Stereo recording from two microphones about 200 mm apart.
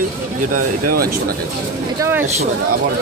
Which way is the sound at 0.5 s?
50° right (ahead or behind).